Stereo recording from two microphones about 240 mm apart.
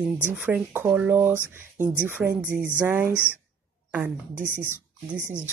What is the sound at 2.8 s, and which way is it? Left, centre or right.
A woman's voice, centre.